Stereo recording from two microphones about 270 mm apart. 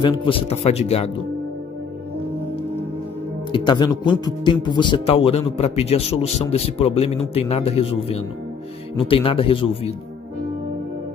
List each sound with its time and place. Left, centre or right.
0.2 s a man's voice: centre
3.5 s a man's voice: centre